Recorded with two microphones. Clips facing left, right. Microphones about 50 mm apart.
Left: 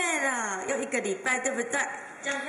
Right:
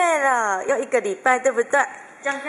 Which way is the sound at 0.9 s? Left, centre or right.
Right.